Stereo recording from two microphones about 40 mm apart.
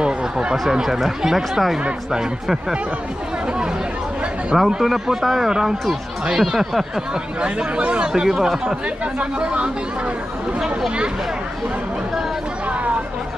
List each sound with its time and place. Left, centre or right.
0.0 s a sound: right
1.0 s a man's voice: centre
4.6 s a man's voice: centre
7.4 s speech: right
8.1 s a man's voice: centre
9.0 s speech: right